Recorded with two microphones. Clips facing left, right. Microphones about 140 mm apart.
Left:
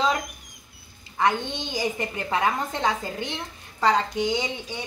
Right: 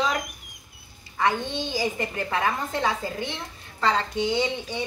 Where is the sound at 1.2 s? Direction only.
20° left (ahead or behind).